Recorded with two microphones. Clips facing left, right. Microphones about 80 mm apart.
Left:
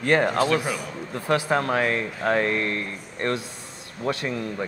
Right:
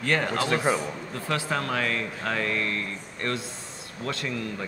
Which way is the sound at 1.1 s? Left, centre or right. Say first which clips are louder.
Left 7 dB; left.